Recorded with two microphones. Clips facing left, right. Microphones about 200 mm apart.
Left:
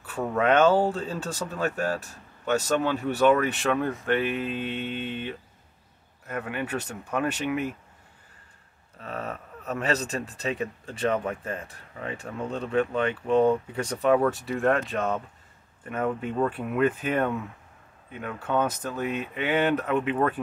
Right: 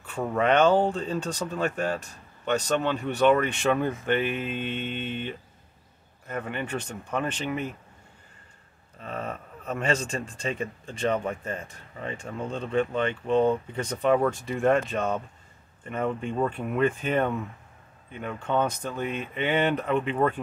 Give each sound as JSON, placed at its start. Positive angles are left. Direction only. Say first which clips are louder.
{"t": 0.0, "sound": "a sound", "louder": "even", "side_deg": 5}
{"t": 0.4, "sound": "speech", "louder": "even", "side_deg": 5}
{"t": 9.0, "sound": "speech", "louder": "even", "side_deg": 5}